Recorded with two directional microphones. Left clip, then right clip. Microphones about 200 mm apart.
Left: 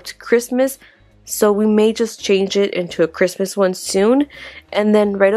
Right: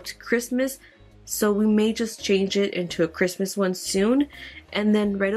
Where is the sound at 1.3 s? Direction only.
25° left (ahead or behind).